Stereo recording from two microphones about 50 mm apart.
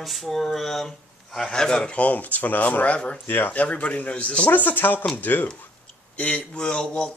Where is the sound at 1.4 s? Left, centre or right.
Centre.